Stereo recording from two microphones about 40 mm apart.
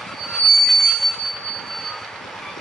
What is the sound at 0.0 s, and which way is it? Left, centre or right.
Train wheels squealing, centre.